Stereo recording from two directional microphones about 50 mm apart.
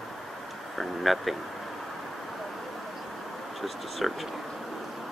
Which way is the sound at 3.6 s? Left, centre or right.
Centre.